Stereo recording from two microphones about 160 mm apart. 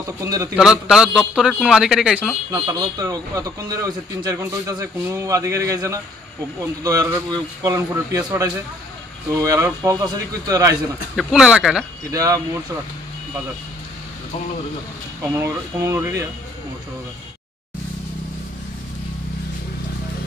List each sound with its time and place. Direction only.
0.2 s speech: 20° right (ahead or behind)
0.6 s a man's voice: 5° right (ahead or behind)
2.5 s speech: 25° right (ahead or behind)
9.3 s speech: 20° right (ahead or behind)
11.1 s a man's voice: 5° right (ahead or behind)
12.1 s speech: 20° right (ahead or behind)
15.3 s speech: 15° right (ahead or behind)